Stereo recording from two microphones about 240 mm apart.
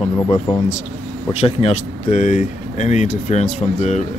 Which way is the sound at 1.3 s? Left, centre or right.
Left.